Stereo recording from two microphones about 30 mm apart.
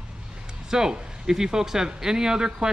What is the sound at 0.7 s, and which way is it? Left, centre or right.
Speech, right.